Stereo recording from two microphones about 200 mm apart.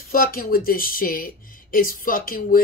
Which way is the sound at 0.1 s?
45° left (ahead or behind).